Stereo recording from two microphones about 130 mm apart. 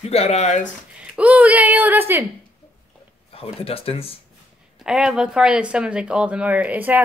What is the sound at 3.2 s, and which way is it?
Speech, 45° left (ahead or behind).